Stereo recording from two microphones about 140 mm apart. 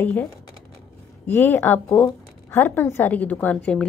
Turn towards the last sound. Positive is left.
turn(degrees=10)  # may be behind; listen again after turning